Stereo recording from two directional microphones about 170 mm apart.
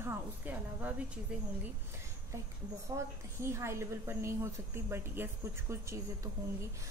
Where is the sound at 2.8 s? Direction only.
15° right (ahead or behind).